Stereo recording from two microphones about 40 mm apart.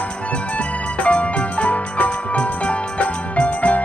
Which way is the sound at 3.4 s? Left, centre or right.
Left.